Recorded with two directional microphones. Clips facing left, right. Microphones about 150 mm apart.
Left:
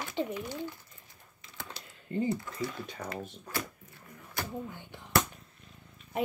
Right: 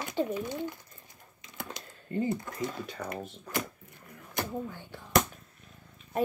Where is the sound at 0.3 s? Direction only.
20° right (ahead or behind).